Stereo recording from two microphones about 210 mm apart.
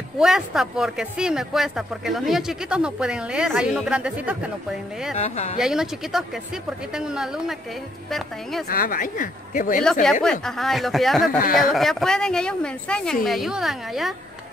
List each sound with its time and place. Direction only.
0.2 s speech: centre (ahead or behind)
5.1 s speech: 30° left (ahead or behind)
5.6 s speech: centre (ahead or behind)
8.6 s speech: 45° left (ahead or behind)
10.2 s speech: centre (ahead or behind)
11.2 s speech: 40° left (ahead or behind)
11.7 s speech: centre (ahead or behind)